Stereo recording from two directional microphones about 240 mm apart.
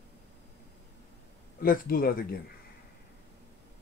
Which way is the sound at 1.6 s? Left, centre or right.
Left.